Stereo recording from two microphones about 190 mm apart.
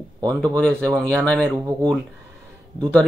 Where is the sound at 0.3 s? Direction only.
5° left (ahead or behind).